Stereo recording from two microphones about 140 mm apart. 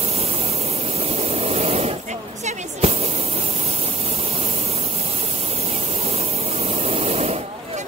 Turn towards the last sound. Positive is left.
turn(degrees=-45)  # may be behind; listen again after turning